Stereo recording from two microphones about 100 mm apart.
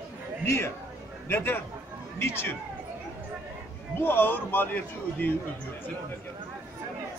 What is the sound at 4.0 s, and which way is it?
A man's voice, 20° left (ahead or behind).